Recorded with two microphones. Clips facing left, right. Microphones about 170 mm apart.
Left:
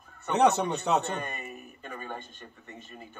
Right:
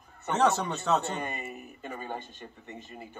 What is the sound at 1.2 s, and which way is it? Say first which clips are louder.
Speech: right 1 dB; 15° right (ahead or behind).